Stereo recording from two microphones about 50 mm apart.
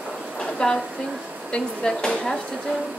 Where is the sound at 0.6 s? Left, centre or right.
Centre.